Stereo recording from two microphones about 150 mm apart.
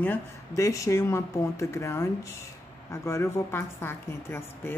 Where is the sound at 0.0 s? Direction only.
15° left (ahead or behind).